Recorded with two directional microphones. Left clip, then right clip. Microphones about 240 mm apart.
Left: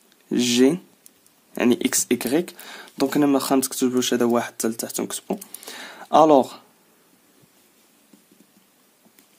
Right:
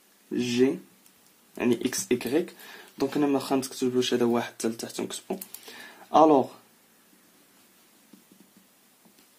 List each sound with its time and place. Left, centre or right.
0.3 s speech: left